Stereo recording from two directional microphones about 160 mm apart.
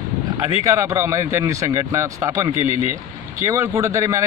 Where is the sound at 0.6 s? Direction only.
20° right (ahead or behind).